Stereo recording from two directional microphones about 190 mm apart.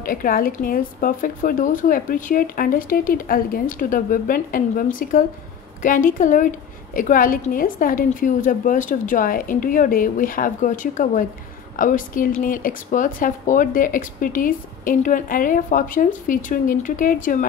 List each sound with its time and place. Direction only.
0.0 s a woman's voice: 45° left (ahead or behind)